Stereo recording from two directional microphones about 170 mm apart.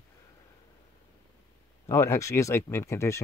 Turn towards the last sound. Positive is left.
turn(degrees=15)  # may be behind; listen again after turning